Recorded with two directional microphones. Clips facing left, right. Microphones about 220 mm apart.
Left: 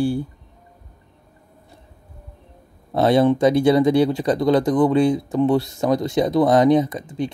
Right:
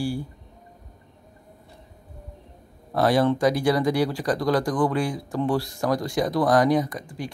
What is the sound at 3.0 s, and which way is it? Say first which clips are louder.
Speech: left 5 dB; 25° left (ahead or behind).